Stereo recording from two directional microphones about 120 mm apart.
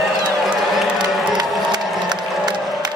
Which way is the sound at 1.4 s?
35° right (ahead or behind).